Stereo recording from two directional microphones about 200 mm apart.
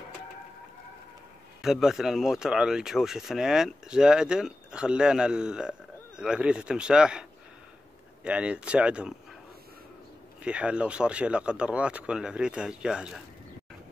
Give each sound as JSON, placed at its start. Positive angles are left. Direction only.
{"t": 1.6, "sound": "speech", "side_deg": 0}
{"t": 10.4, "sound": "speech", "side_deg": -5}